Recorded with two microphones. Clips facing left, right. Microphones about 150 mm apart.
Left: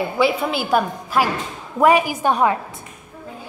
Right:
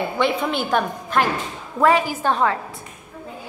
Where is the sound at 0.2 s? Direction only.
5° left (ahead or behind).